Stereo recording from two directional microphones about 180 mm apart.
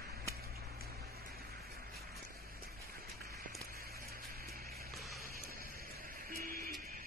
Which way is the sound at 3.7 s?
55° right (ahead or behind).